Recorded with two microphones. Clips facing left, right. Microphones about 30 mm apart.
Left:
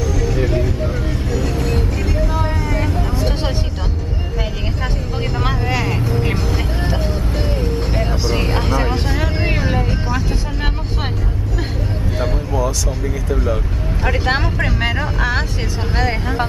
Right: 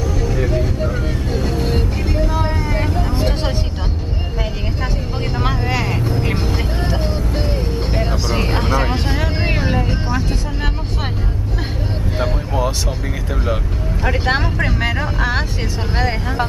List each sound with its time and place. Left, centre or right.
1.6 s vehicle: right
2.4 s vehicle: centre
5.4 s vehicle: centre
6.3 s vehicle: centre
14.0 s vehicle: centre